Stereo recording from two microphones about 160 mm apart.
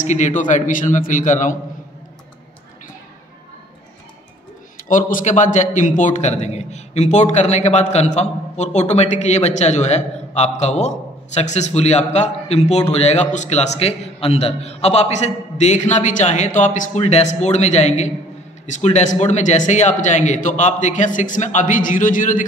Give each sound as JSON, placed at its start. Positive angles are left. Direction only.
{"t": 0.0, "sound": "a man's voice", "side_deg": 50}
{"t": 4.8, "sound": "a man's voice", "side_deg": 55}